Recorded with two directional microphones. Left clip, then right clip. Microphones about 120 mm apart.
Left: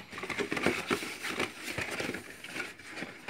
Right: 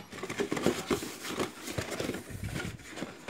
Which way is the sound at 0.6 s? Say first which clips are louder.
Left 1 dB; 40° right (ahead or behind).